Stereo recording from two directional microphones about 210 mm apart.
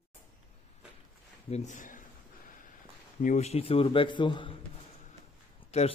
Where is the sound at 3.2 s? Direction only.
35° left (ahead or behind).